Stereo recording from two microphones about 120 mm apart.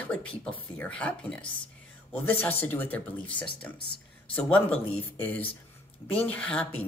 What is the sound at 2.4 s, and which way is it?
Speech, 15° left (ahead or behind).